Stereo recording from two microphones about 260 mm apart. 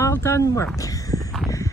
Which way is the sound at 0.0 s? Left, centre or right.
Centre.